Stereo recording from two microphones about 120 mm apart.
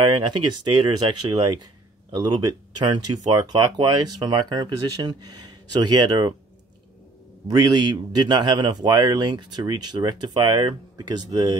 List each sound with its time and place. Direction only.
0.0 s speech: 40° right (ahead or behind)
3.5 s speech: 40° right (ahead or behind)
7.5 s speech: 35° right (ahead or behind)